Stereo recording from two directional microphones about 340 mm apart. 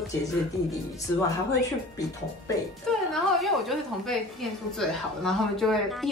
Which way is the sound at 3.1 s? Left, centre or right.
Centre.